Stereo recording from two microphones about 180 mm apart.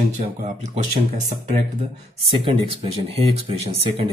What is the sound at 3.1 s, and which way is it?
Speech, 35° right (ahead or behind).